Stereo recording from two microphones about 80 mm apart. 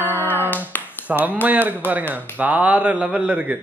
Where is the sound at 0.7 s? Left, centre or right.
Left.